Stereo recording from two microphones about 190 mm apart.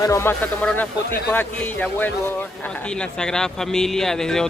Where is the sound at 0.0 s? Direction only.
15° left (ahead or behind).